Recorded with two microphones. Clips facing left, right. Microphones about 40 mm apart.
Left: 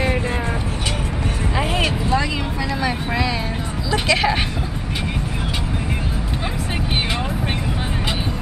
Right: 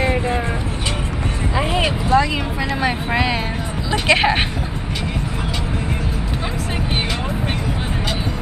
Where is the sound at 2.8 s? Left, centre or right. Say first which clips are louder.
Right 3 dB; right.